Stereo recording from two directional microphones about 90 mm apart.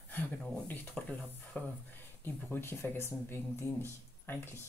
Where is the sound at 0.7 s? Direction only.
20° left (ahead or behind).